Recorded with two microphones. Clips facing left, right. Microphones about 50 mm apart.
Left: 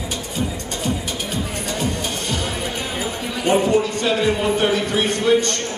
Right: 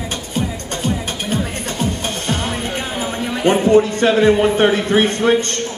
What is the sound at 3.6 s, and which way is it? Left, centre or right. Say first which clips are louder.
A man's voice: right 6 dB; right.